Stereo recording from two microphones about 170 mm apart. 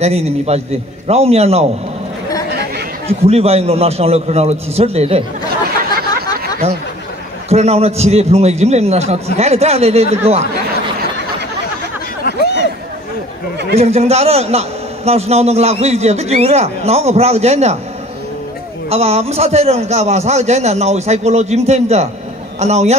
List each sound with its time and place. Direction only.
0.0 s a man's voice: 40° right (ahead or behind)
3.1 s a man's voice: 35° right (ahead or behind)
7.4 s a man's voice: 40° right (ahead or behind)
12.3 s a sound: 80° left
13.7 s a man's voice: 40° right (ahead or behind)
18.9 s a man's voice: 40° right (ahead or behind)